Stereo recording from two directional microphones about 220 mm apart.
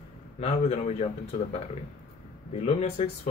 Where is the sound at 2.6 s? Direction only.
25° left (ahead or behind).